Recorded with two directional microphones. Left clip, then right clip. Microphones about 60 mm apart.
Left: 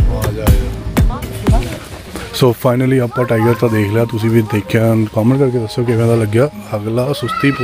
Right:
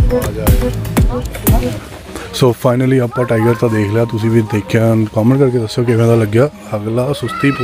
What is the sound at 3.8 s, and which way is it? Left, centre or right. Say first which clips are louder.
Speech: even; centre.